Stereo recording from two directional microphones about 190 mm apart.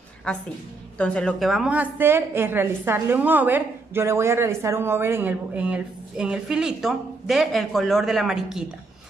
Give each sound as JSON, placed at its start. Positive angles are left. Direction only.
{"t": 0.3, "sound": "a woman's voice", "side_deg": 5}